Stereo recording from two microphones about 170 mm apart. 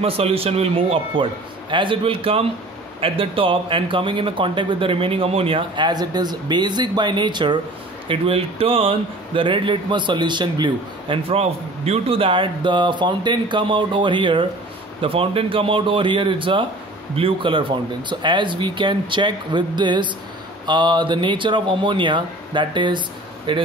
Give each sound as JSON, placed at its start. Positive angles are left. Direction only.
{"t": 0.0, "sound": "a man's voice", "side_deg": -35}